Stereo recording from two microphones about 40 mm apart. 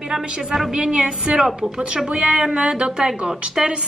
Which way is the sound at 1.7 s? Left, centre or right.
Right.